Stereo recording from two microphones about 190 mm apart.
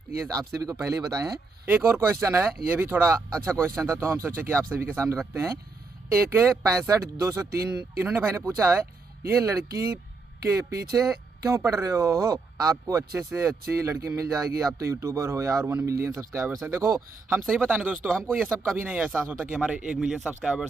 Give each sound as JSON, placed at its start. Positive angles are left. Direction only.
{"t": 0.2, "sound": "speech", "side_deg": -15}
{"t": 3.2, "sound": "speech", "side_deg": 5}
{"t": 3.8, "sound": "speech", "side_deg": -15}
{"t": 18.2, "sound": "speech", "side_deg": 5}